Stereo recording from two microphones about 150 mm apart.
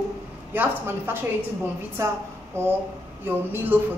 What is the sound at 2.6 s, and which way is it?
A woman's voice, 15° right (ahead or behind).